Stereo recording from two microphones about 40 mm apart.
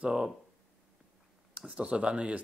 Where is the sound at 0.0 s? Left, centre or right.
Centre.